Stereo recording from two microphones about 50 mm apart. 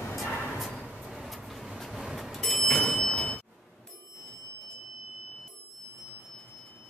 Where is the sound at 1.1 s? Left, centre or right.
Centre.